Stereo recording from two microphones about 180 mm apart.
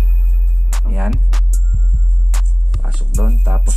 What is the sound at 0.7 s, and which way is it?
Music, centre (ahead or behind).